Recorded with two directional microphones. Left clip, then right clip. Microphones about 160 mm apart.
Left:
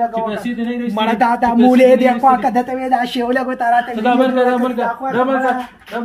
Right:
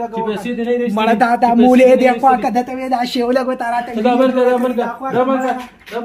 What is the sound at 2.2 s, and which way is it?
Speech, 25° right (ahead or behind).